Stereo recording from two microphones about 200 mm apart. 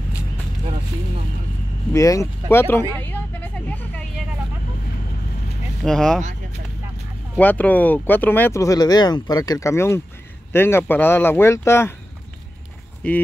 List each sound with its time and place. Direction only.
1.9 s speech: 15° left (ahead or behind)
3.0 s vehicle: 10° left (ahead or behind)
5.9 s speech: centre (ahead or behind)
7.3 s speech: 10° left (ahead or behind)
13.0 s speech: 5° left (ahead or behind)